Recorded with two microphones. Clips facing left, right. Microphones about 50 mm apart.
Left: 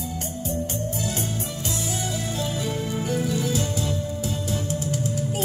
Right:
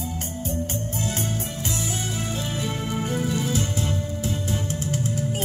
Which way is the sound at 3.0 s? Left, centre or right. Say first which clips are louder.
Left 1 dB; right.